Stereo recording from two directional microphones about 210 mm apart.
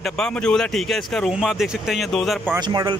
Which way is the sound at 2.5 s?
20° right (ahead or behind).